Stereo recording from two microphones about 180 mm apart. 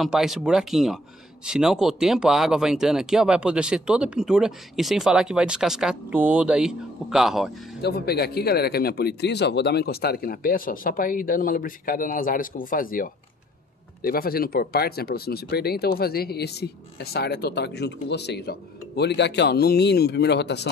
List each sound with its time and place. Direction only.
0.0 s speech: centre (ahead or behind)
7.8 s speech: 60° left (ahead or behind)